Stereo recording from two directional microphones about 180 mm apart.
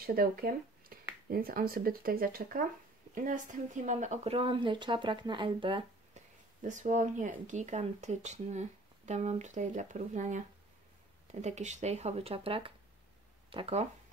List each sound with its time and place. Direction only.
0.0 s speech: 55° right (ahead or behind); by 6.2 s 30° right (ahead or behind)
6.6 s speech: 45° right (ahead or behind)